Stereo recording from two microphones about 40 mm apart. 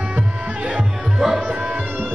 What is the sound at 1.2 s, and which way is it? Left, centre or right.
Music, centre.